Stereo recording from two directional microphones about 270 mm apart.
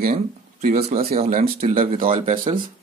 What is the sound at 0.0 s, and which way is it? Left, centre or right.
Speech, right.